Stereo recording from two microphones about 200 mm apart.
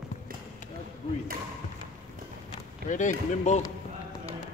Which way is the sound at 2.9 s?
40° left (ahead or behind).